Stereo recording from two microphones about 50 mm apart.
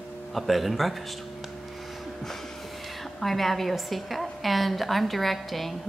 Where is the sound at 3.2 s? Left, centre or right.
Centre.